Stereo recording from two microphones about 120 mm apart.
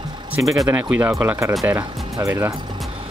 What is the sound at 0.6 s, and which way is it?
Speech, 15° right (ahead or behind).